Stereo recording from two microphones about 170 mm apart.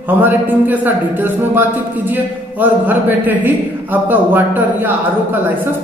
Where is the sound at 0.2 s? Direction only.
10° right (ahead or behind).